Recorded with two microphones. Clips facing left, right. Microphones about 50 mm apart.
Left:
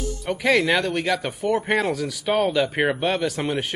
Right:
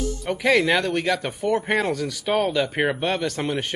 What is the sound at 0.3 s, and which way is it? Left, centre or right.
Speech, centre.